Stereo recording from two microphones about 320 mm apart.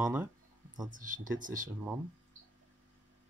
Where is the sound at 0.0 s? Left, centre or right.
Centre.